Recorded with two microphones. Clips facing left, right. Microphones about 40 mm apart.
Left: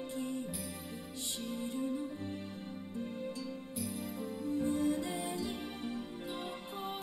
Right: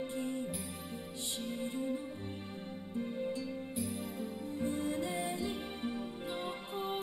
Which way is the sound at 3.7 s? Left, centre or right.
Right.